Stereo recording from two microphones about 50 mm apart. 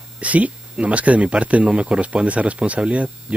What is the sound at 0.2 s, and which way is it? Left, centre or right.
Speech, right.